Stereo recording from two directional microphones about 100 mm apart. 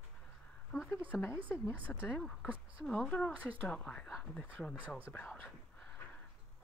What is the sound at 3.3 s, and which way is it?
Speech, 15° right (ahead or behind).